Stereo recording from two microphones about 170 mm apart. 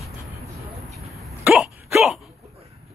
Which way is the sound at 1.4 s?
5° right (ahead or behind).